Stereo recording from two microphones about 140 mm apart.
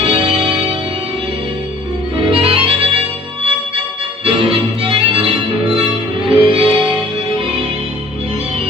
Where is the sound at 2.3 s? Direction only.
40° right (ahead or behind).